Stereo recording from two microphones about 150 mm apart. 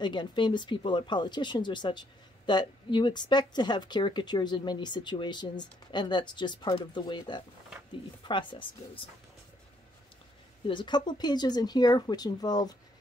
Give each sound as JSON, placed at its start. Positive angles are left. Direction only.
{"t": 0.0, "sound": "speech", "side_deg": 30}
{"t": 10.7, "sound": "speech", "side_deg": 30}